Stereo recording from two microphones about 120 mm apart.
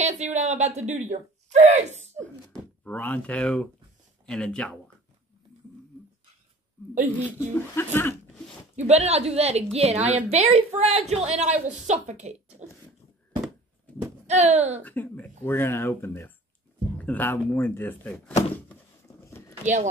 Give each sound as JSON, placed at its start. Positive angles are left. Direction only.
{"t": 0.0, "sound": "speech", "side_deg": -70}
{"t": 2.5, "sound": "speech", "side_deg": 10}
{"t": 7.2, "sound": "speech", "side_deg": 20}
{"t": 8.7, "sound": "a woman's voice", "side_deg": -60}
{"t": 11.6, "sound": "speech", "side_deg": -80}
{"t": 14.2, "sound": "speech", "side_deg": -65}
{"t": 14.8, "sound": "speech", "side_deg": 15}
{"t": 19.6, "sound": "speech", "side_deg": -80}